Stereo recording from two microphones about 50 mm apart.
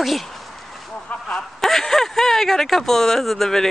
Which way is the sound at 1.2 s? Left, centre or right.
Centre.